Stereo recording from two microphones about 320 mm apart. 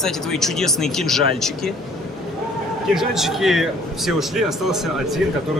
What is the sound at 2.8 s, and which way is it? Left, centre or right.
A man's voice, centre.